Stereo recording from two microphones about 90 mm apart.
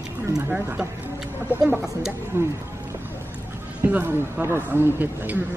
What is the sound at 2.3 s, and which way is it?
Speech, 25° right (ahead or behind).